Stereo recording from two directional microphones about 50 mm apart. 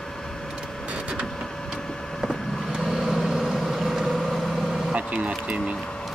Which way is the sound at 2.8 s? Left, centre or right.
Centre.